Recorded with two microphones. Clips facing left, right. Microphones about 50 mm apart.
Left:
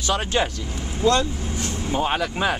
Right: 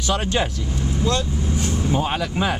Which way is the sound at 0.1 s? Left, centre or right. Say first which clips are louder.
Even; centre.